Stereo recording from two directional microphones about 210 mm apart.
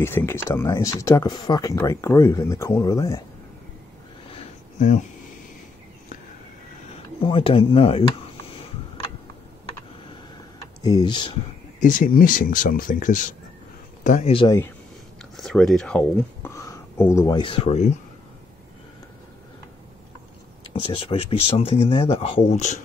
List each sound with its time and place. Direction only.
0.0 s speech: 10° left (ahead or behind)
4.7 s speech: 35° left (ahead or behind)
7.2 s speech: 25° left (ahead or behind)
10.8 s speech: 20° left (ahead or behind)
11.8 s speech: 40° left (ahead or behind)
14.3 s speech: 25° left (ahead or behind)
15.3 s speech: centre (ahead or behind)
16.4 s speech: 15° left (ahead or behind); by 17.9 s 30° left (ahead or behind)
20.8 s speech: 25° left (ahead or behind)